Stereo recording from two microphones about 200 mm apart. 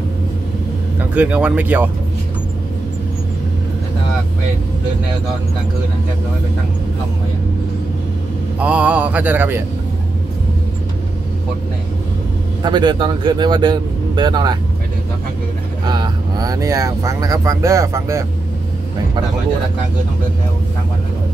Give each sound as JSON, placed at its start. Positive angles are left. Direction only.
{"t": 1.1, "sound": "speech", "side_deg": -5}
{"t": 8.5, "sound": "speech", "side_deg": -5}
{"t": 12.6, "sound": "speech", "side_deg": -20}
{"t": 15.9, "sound": "speech", "side_deg": -20}